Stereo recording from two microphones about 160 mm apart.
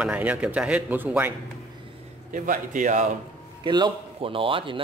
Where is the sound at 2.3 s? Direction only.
55° right (ahead or behind).